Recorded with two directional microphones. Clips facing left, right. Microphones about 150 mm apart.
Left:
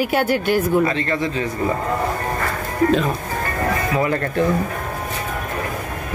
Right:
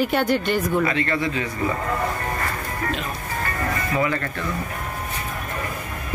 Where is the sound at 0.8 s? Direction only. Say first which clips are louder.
Left 2 dB; 25° left (ahead or behind).